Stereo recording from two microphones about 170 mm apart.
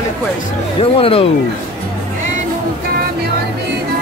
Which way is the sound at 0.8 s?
35° left (ahead or behind).